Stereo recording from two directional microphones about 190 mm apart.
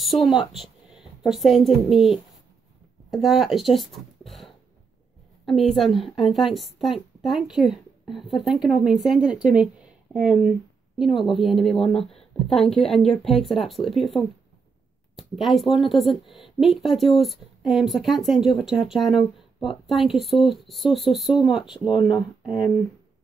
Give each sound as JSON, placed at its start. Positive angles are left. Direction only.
{"t": 0.0, "sound": "a woman's voice", "side_deg": 0}
{"t": 21.7, "sound": "speech", "side_deg": 25}
{"t": 22.5, "sound": "speech", "side_deg": 0}